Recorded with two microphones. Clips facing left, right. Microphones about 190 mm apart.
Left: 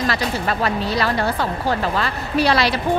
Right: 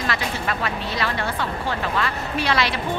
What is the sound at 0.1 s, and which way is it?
Speech, 35° left (ahead or behind).